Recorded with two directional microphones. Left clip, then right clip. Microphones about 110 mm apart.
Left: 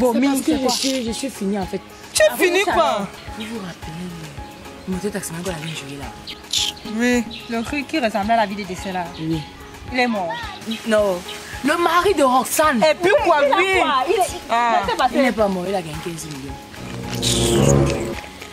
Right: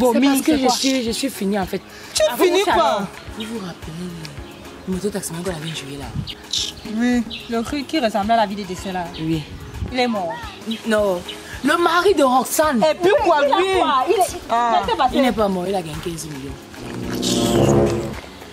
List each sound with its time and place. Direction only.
0.3 s speech: 35° right (ahead or behind)
0.7 s a woman's voice: centre (ahead or behind)
1.0 s speech: 40° right (ahead or behind)
2.1 s a woman's voice: centre (ahead or behind)
5.0 s speech: 10° right (ahead or behind)
6.5 s speech: 10° left (ahead or behind)
7.5 s speech: 5° right (ahead or behind)
12.7 s a woman's voice: 5° left (ahead or behind)
14.5 s a woman's voice: 10° left (ahead or behind)
15.2 s speech: 15° right (ahead or behind)
17.2 s a woman's voice: 5° left (ahead or behind)